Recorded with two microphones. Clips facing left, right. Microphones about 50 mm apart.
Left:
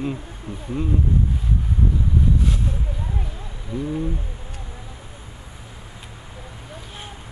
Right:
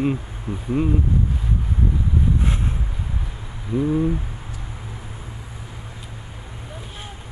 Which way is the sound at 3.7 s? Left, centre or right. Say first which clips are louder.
Right 6 dB; centre.